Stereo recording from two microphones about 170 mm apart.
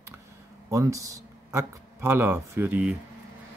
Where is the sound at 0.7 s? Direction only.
20° right (ahead or behind).